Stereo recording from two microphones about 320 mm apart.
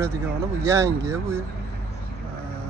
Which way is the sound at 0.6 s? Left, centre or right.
Centre.